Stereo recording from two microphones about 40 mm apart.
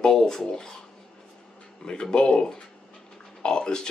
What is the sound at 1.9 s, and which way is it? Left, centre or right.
Speech, left.